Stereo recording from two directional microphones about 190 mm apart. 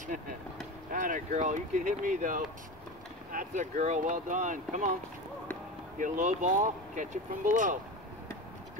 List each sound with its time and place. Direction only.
0.9 s speech: 40° right (ahead or behind)
5.9 s speech: 45° right (ahead or behind)